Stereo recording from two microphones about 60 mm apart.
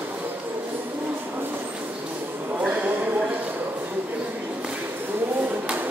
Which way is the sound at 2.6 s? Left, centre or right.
Right.